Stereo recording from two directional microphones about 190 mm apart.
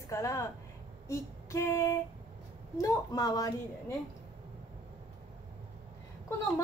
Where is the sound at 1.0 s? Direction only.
15° left (ahead or behind).